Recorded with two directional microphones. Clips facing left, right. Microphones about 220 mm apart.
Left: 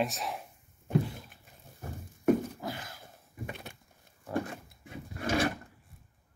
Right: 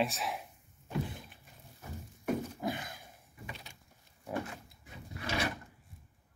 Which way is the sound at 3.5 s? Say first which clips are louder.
Left 4 dB; 55° left (ahead or behind).